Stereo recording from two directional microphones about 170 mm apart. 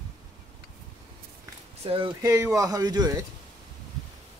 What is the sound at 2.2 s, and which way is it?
Speech, 15° right (ahead or behind).